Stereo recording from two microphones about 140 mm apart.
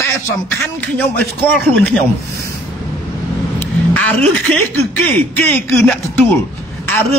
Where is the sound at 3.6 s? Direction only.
10° left (ahead or behind).